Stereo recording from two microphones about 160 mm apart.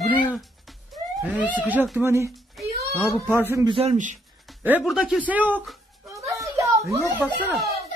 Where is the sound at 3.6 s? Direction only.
35° right (ahead or behind).